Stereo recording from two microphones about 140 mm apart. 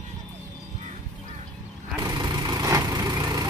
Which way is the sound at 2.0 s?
25° right (ahead or behind).